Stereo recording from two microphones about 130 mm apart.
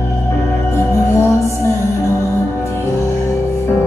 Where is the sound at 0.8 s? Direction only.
25° left (ahead or behind).